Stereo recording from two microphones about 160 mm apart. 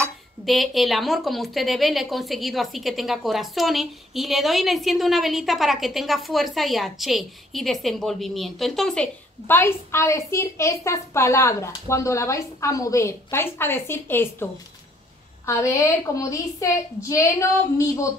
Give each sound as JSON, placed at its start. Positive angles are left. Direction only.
{"t": 0.5, "sound": "a woman's voice", "side_deg": 0}
{"t": 9.6, "sound": "a woman's voice", "side_deg": 15}